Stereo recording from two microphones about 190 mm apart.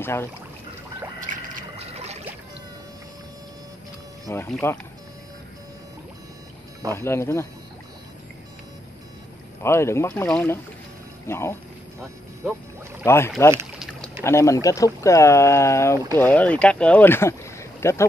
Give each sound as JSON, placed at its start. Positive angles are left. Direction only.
{"t": 0.0, "sound": "speech", "side_deg": 10}
{"t": 1.2, "sound": "a sound", "side_deg": -40}
{"t": 4.3, "sound": "speech", "side_deg": 15}
{"t": 6.9, "sound": "speech", "side_deg": 15}
{"t": 9.6, "sound": "speech", "side_deg": 15}
{"t": 13.0, "sound": "speech", "side_deg": 15}